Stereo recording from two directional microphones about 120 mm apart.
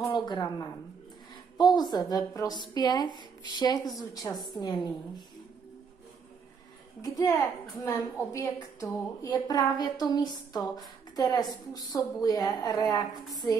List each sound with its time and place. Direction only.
0.1 s a woman's voice: 35° left (ahead or behind)
7.0 s a woman's voice: 30° left (ahead or behind)